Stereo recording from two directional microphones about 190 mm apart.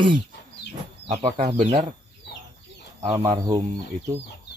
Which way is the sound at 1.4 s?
40° right (ahead or behind).